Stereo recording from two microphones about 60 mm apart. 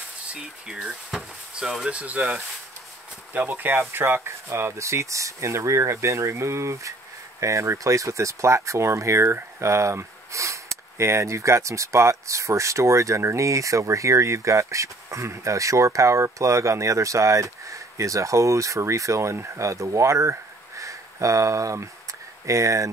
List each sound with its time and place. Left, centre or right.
0.3 s speech: centre; by 22.8 s right